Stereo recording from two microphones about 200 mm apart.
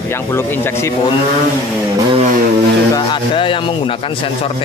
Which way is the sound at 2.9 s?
25° left (ahead or behind).